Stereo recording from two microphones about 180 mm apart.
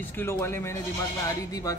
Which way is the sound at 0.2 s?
15° left (ahead or behind).